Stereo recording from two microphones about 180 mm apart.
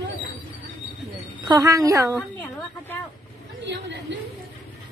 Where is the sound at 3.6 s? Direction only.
90° right.